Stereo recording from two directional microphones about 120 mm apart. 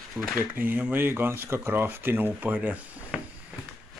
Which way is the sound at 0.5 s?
15° right (ahead or behind).